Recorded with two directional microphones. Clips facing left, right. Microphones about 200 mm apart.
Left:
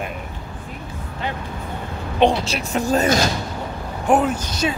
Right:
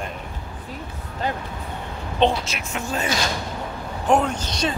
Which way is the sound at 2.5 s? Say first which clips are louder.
Left 8 dB; 35° left (ahead or behind).